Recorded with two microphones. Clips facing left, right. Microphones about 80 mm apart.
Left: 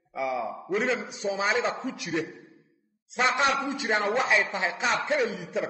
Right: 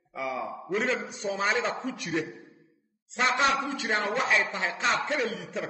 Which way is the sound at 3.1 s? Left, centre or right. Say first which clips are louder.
Left 1 dB; centre.